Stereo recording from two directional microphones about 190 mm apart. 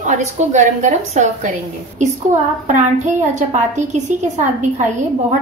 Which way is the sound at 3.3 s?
40° right (ahead or behind).